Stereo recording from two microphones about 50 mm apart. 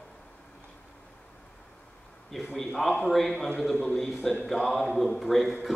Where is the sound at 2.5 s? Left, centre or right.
Centre.